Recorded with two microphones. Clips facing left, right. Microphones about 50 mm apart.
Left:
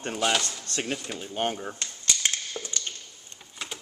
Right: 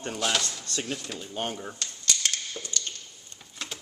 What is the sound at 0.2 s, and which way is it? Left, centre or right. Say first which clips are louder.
Speech: left 3 dB; centre.